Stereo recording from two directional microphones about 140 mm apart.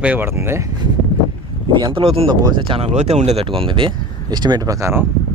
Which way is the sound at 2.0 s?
40° right (ahead or behind).